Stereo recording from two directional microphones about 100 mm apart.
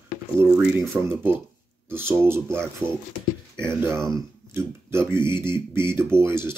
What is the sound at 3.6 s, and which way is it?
Speech, 25° right (ahead or behind).